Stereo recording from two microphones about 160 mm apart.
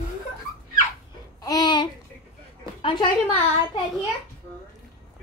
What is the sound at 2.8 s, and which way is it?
Speech, 35° left (ahead or behind).